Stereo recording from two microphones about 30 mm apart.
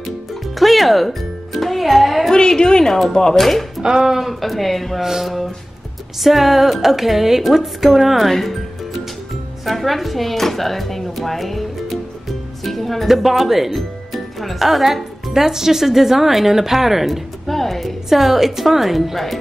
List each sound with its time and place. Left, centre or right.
0.3 s speech: centre
2.3 s a woman's voice: left
3.3 s speech: centre
3.8 s speech: right
4.2 s speech: centre
5.0 s a woman's voice: centre
8.3 s speech: centre
9.7 s speech: centre
12.6 s speech: centre
17.5 s speech: centre